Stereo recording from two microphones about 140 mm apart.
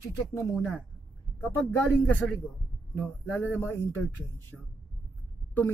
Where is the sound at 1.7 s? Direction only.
10° left (ahead or behind).